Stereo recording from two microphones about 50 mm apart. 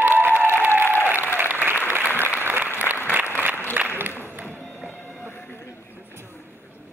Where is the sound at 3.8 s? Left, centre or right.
Right.